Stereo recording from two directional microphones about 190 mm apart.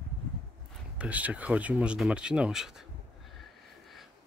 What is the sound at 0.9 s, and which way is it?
Speech, 5° right (ahead or behind).